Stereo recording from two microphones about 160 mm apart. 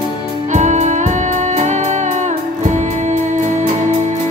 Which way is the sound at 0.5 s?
50° right (ahead or behind).